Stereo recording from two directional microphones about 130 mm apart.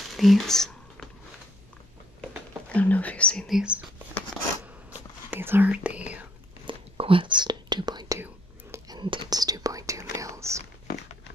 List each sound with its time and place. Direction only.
0.1 s whispering: centre (ahead or behind)
2.7 s speech: 10° left (ahead or behind); by 3.8 s 5° right (ahead or behind)
4.6 s whispering: 15° right (ahead or behind)
6.6 s whispering: 40° right (ahead or behind); by 10.6 s 25° right (ahead or behind)